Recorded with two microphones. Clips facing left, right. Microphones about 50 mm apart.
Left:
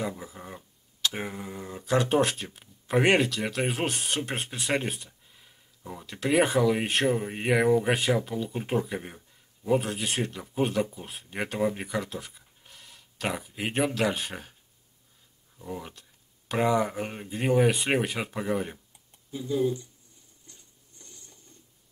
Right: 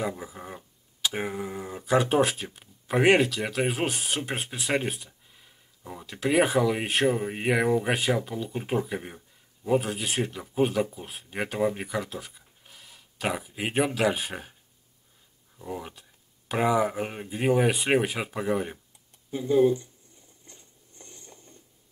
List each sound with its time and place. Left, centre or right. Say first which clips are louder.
0.0 s speech: right 2 dB; centre
15.5 s speech: right 2 dB; centre
19.3 s speech: right 6 dB; right
20.4 s patter: right 2 dB; right